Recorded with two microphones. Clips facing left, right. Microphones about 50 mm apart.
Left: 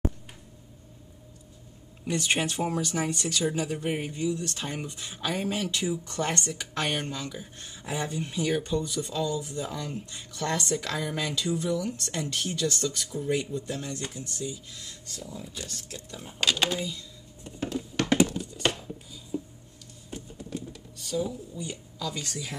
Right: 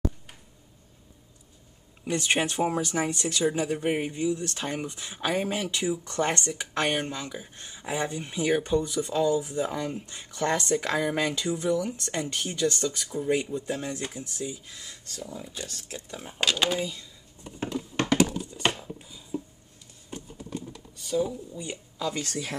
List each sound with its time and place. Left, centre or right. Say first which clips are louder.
2.1 s speech: right 2 dB; centre
17.6 s computer keyboard: even; right
18.0 s typing: even; right
18.5 s a sound: right 1 dB; centre
20.1 s computer keyboard: even; centre
21.6 s speech: right 5 dB; right